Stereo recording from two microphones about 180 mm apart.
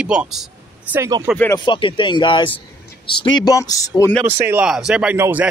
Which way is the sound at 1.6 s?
25° left (ahead or behind).